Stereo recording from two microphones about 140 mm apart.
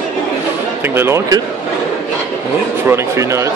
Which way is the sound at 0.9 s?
20° right (ahead or behind).